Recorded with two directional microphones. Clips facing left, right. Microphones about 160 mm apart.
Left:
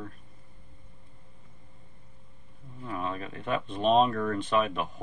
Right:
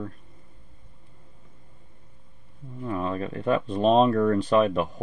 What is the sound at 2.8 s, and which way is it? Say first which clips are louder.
Speech: right 6 dB; 35° right (ahead or behind).